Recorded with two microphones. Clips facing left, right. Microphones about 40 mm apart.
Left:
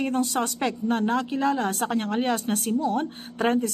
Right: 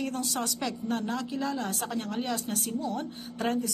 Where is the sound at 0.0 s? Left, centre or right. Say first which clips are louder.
Left 7 dB; left.